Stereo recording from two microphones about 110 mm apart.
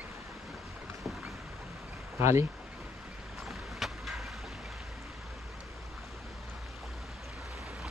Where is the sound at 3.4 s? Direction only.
Centre (ahead or behind).